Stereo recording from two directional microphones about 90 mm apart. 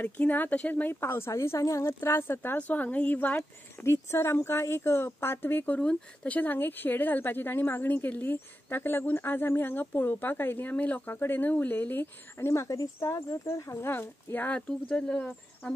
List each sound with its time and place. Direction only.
0.0 s speech: 20° left (ahead or behind)
14.7 s speech: 10° left (ahead or behind)